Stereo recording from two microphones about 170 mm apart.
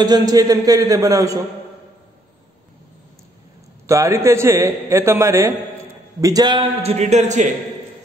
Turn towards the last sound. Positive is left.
turn(degrees=-45)  # may be behind; listen again after turning